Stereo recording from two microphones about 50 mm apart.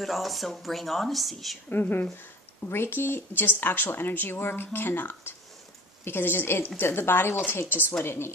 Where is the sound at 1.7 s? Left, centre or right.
Left.